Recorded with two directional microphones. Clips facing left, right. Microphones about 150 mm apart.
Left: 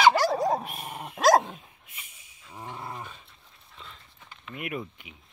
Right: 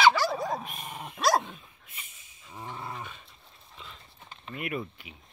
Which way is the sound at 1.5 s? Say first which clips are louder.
Left 3 dB; 10° left (ahead or behind).